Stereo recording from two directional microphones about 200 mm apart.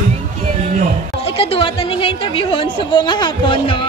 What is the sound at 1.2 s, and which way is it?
Speech, 30° left (ahead or behind).